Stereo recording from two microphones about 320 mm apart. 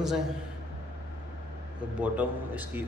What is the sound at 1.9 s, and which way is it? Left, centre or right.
Speech, centre.